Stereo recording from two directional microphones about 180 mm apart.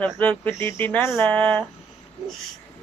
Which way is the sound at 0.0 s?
10° left (ahead or behind).